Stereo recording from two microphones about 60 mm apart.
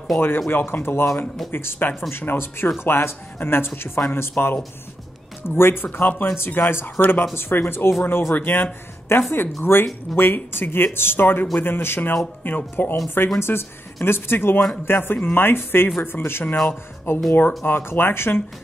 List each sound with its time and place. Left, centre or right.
0.5 s speech: left
5.6 s speech: left
13.4 s speech: left